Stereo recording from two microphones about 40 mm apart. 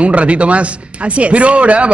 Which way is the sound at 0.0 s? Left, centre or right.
Right.